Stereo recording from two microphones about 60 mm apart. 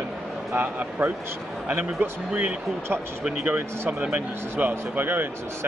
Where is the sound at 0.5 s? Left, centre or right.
Right.